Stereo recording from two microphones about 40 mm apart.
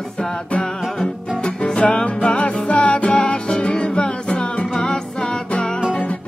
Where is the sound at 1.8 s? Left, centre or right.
Left.